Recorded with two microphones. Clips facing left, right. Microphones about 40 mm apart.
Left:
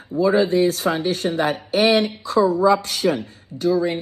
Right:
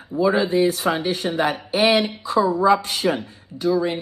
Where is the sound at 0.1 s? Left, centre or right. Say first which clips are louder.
Left 2 dB; centre.